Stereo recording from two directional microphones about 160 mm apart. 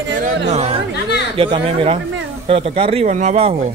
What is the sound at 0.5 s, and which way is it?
Speech, 40° right (ahead or behind).